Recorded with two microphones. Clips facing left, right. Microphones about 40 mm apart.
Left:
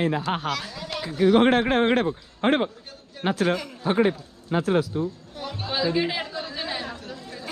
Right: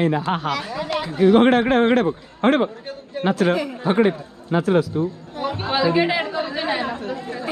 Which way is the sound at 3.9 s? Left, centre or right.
Right.